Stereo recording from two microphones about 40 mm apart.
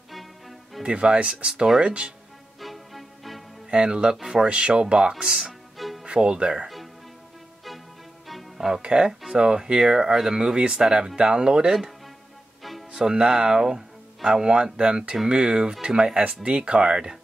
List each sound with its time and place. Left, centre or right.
0.1 s music: centre
0.8 s speech: right
2.6 s music: centre
3.7 s speech: right
5.8 s music: centre
6.2 s speech: right
8.3 s music: centre
8.8 s speech: centre
12.9 s speech: centre